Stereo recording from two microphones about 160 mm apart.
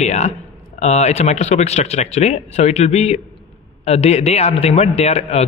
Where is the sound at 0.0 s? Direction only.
45° left (ahead or behind).